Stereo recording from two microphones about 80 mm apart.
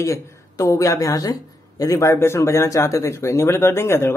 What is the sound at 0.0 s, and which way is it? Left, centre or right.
Speech, left.